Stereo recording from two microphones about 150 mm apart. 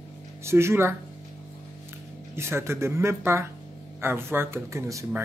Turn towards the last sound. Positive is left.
turn(degrees=-20)  # may be behind; listen again after turning